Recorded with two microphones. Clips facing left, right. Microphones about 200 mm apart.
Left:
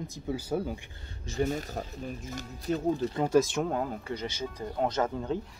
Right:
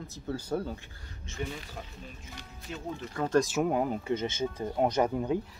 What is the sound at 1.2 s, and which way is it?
Speech, 40° left (ahead or behind).